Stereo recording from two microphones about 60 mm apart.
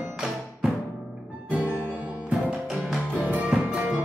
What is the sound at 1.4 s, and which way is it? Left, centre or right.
Music, right.